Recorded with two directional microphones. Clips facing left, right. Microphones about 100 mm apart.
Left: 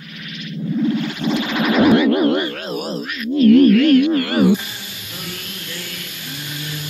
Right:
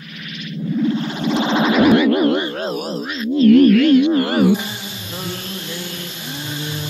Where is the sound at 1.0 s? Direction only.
25° right (ahead or behind).